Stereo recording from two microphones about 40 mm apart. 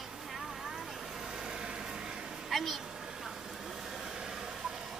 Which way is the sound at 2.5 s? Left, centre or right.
Centre.